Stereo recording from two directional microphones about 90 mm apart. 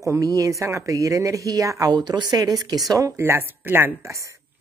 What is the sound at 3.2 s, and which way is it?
Speech, 25° right (ahead or behind).